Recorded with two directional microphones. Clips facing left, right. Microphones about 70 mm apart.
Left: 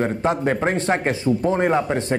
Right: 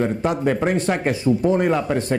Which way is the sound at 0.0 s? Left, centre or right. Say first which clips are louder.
Even; left.